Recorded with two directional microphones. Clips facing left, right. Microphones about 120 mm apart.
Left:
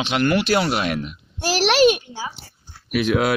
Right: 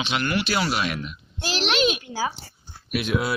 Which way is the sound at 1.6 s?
70° left (ahead or behind).